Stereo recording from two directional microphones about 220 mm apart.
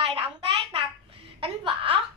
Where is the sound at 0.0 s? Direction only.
25° right (ahead or behind).